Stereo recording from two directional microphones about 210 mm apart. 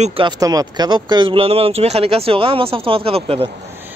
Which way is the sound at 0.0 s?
25° right (ahead or behind).